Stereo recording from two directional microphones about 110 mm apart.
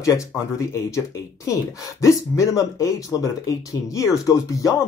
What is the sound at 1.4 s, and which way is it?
Speech, 30° left (ahead or behind).